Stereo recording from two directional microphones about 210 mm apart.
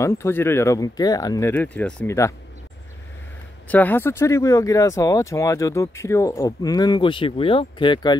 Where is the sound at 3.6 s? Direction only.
5° left (ahead or behind).